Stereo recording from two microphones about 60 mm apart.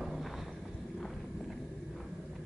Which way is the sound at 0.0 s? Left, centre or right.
Centre.